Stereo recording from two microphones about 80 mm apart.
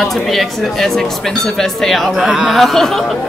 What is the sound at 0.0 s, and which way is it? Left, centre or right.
Speech, centre.